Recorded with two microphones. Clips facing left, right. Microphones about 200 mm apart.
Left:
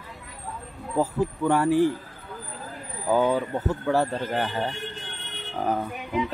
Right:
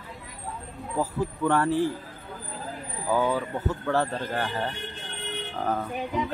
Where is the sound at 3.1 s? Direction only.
20° left (ahead or behind).